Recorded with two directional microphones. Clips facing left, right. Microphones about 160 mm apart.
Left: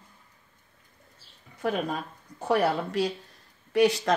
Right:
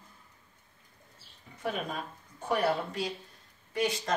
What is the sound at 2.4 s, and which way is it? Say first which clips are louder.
Speech: left 4 dB; 75° left (ahead or behind).